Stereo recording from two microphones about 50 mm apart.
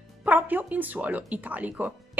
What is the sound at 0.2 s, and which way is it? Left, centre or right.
Speech, right.